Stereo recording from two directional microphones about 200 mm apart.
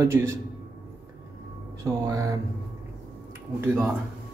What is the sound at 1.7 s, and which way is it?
Speech, 15° right (ahead or behind).